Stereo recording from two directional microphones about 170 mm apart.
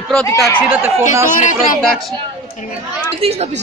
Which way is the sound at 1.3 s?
45° left (ahead or behind).